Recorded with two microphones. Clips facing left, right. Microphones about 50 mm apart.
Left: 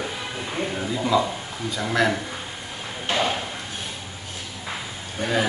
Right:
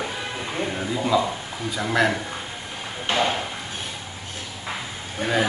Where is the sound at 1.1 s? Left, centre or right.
Centre.